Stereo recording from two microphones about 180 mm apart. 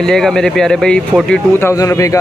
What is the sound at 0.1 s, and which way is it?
Speech, 5° left (ahead or behind).